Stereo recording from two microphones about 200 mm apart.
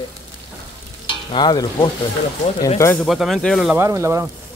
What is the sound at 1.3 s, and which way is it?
Stir, 20° left (ahead or behind).